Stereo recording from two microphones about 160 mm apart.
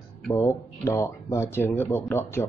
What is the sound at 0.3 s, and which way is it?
Speech, 20° left (ahead or behind).